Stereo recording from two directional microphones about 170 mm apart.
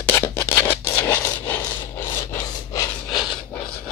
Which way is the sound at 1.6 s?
15° left (ahead or behind).